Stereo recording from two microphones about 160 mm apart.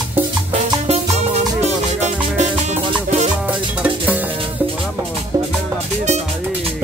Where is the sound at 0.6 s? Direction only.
40° right (ahead or behind).